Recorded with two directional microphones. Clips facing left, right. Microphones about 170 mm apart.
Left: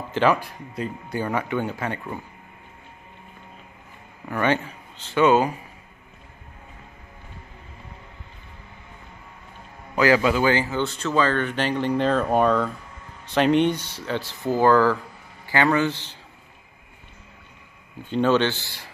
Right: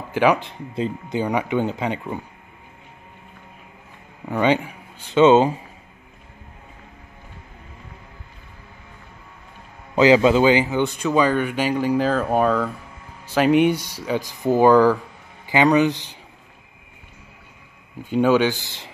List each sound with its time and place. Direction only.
0.1 s speech: 10° right (ahead or behind)
0.4 s speech: 25° right (ahead or behind)
4.3 s speech: 15° right (ahead or behind)
9.9 s a man's voice: 20° right (ahead or behind)
18.1 s speech: 10° right (ahead or behind)